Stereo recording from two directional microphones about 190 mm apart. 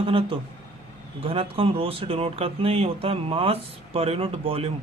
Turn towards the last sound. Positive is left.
turn(degrees=-30)  # may be behind; listen again after turning